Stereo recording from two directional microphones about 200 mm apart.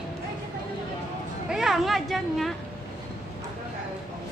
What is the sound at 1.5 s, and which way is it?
Speech, centre (ahead or behind).